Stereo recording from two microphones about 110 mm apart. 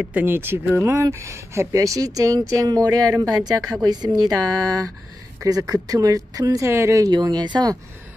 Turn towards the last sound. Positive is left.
turn(degrees=-40)  # may be behind; listen again after turning